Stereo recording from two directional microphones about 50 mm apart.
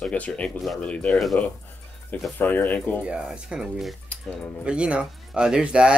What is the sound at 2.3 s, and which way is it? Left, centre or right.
Speech, left.